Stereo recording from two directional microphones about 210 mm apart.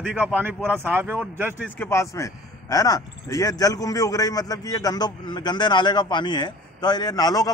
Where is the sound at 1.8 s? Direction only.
15° left (ahead or behind).